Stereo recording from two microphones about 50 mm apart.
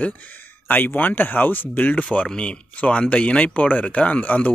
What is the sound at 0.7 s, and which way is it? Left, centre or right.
Speech, left.